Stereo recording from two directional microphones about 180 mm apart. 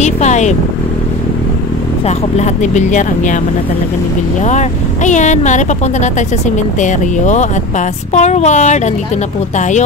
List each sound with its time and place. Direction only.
0.0 s vehicle: 40° left (ahead or behind)
2.0 s speech: 40° left (ahead or behind)
4.5 s speech: 40° left (ahead or behind)